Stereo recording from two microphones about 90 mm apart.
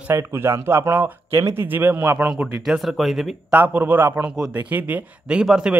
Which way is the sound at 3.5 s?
20° right (ahead or behind).